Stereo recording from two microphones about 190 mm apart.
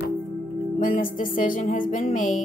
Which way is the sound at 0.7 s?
45° left (ahead or behind).